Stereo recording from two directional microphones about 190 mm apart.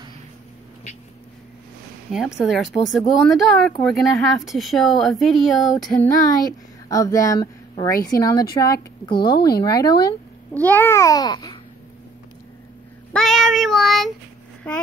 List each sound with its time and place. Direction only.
2.1 s speech: centre (ahead or behind)
6.4 s a woman's voice: 15° left (ahead or behind)
10.5 s babbling: 10° left (ahead or behind)
13.1 s child singing: centre (ahead or behind)
14.7 s babbling: 5° left (ahead or behind)